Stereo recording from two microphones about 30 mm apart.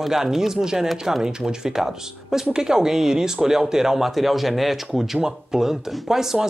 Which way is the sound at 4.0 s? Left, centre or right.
Centre.